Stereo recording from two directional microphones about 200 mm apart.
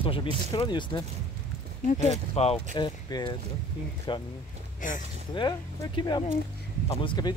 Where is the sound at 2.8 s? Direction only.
20° left (ahead or behind).